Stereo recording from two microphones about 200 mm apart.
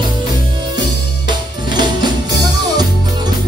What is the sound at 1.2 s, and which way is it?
Music, 20° right (ahead or behind).